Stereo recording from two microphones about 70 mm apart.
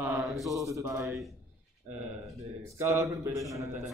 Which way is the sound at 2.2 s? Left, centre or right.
Right.